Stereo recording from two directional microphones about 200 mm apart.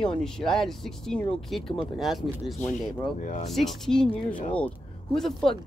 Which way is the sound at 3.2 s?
40° left (ahead or behind).